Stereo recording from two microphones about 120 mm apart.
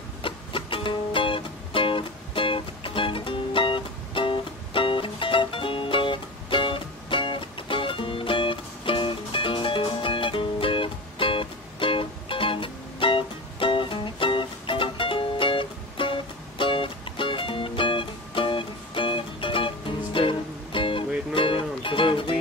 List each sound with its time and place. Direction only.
0.2 s music: 45° left (ahead or behind)